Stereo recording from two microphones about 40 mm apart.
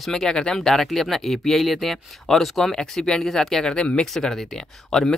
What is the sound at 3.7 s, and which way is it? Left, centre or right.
Speech, left.